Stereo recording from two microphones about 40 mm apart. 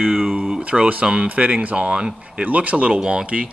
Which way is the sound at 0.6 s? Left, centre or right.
Right.